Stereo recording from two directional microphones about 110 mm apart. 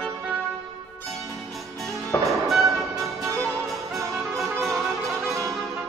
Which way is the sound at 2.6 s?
30° right (ahead or behind).